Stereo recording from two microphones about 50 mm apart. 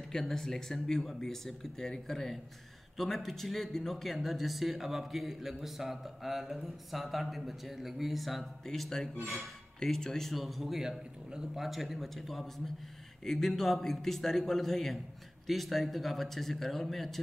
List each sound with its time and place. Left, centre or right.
0.1 s speech: centre